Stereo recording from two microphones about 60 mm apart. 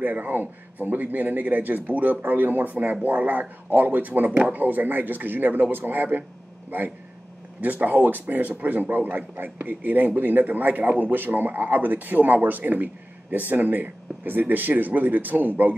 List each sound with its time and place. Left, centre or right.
0.0 s speech: right
7.6 s a man's voice: right